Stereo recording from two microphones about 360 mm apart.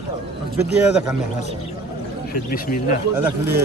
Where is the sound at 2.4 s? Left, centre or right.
Left.